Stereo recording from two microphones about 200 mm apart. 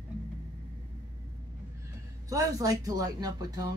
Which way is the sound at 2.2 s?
15° right (ahead or behind).